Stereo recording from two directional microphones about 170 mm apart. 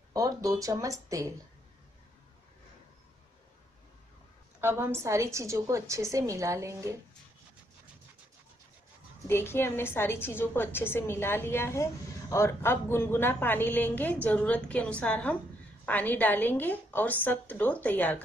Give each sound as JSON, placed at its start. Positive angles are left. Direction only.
{"t": 0.1, "sound": "speech", "side_deg": -20}
{"t": 4.6, "sound": "a woman's voice", "side_deg": -15}
{"t": 9.3, "sound": "a woman's voice", "side_deg": 15}